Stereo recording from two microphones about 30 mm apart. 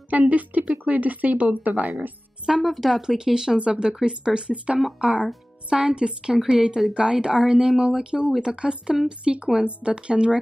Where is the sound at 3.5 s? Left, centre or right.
Right.